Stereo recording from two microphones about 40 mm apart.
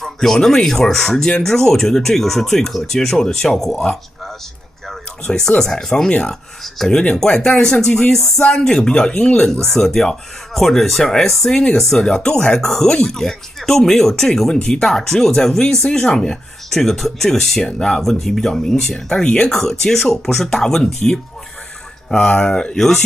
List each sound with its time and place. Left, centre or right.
0.0 s speech: centre
5.2 s speech: centre
8.5 s speech: left; by 11.5 s centre
11.5 s speech: left
22.8 s speech: centre